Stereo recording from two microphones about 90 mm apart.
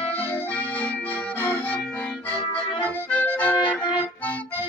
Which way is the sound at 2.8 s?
20° left (ahead or behind).